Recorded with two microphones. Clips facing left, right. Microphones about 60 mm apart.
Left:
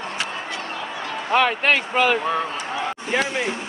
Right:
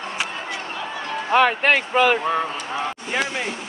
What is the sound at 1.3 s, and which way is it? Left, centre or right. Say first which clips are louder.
Speech: right 2 dB; right.